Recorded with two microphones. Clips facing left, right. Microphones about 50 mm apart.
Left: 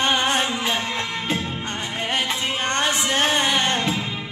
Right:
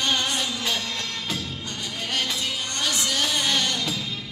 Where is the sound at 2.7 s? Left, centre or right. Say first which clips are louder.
Left 6 dB; left.